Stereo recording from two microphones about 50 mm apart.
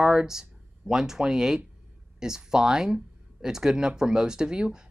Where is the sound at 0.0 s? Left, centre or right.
Centre.